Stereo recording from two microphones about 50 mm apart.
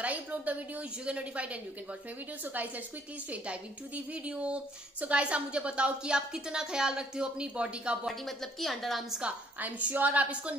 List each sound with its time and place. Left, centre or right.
0.0 s a woman's voice: right
3.3 s a woman's voice: right
8.1 s a woman's voice: centre
9.8 s a woman's voice: right